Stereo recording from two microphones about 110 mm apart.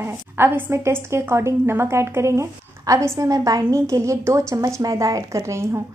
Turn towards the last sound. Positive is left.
turn(degrees=-25)  # may be behind; listen again after turning